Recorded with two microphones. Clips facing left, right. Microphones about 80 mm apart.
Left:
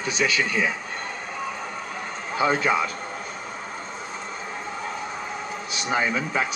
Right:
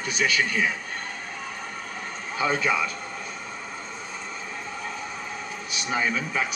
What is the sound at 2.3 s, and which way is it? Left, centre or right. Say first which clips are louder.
Speech: left 3 dB; left.